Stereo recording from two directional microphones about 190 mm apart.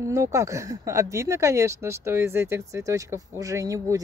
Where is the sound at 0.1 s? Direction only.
15° right (ahead or behind).